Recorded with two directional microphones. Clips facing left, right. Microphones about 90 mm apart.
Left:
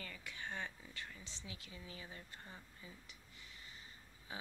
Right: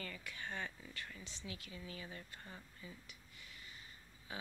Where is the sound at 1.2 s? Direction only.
25° left (ahead or behind).